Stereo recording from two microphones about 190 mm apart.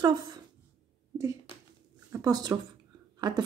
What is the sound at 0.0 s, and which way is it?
Speech, 20° right (ahead or behind).